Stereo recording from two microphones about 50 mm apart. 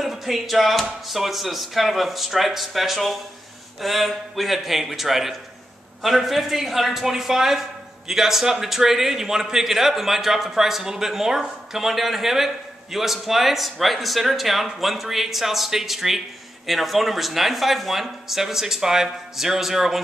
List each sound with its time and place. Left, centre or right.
0.0 s a man's voice: centre